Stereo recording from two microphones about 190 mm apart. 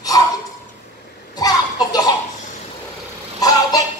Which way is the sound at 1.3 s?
20° left (ahead or behind).